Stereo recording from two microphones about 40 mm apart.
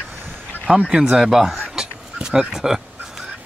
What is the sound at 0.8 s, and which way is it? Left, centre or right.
Speech, centre.